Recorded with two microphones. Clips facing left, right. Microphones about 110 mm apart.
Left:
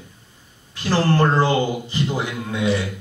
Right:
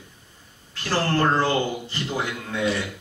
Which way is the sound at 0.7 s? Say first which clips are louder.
Left 4 dB; 15° left (ahead or behind).